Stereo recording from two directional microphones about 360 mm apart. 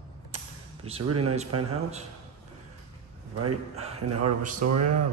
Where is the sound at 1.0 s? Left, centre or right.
Right.